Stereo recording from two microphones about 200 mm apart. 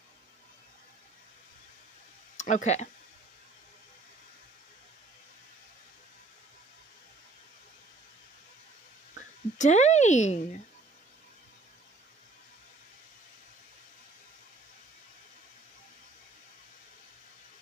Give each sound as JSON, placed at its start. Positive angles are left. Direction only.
{"t": 2.3, "sound": "speech", "side_deg": 35}
{"t": 9.1, "sound": "speech", "side_deg": 35}